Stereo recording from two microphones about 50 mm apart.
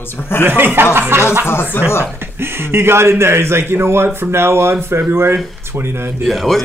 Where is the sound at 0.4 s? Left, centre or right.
Right.